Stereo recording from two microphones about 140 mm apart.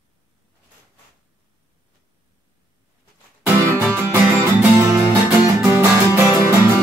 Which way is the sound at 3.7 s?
20° right (ahead or behind).